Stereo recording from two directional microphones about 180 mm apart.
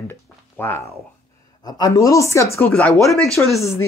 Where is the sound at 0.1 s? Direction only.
10° left (ahead or behind).